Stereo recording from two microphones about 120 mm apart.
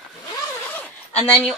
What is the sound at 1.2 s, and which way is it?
Speech, 5° left (ahead or behind).